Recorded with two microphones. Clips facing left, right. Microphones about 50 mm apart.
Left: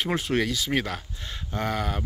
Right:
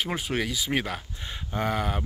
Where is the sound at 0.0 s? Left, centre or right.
Centre.